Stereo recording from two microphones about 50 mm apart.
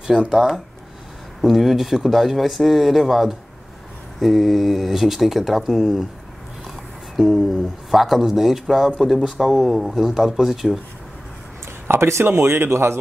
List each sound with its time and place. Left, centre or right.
0.3 s speech: centre
7.2 s speech: centre
11.9 s speech: right